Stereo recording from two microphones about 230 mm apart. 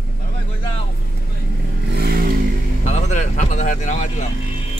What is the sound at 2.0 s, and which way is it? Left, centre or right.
Vehicle, right.